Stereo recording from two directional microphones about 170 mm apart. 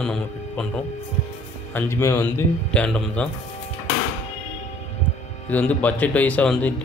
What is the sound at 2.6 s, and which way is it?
Speech, 5° left (ahead or behind).